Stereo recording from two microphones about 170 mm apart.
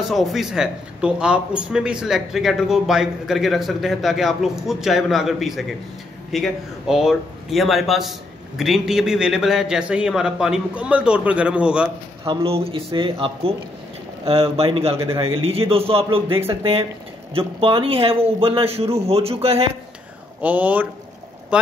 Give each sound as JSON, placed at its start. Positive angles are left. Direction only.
{"t": 0.1, "sound": "a man's voice", "side_deg": 0}
{"t": 12.3, "sound": "a man's voice", "side_deg": -35}
{"t": 20.4, "sound": "speech", "side_deg": -10}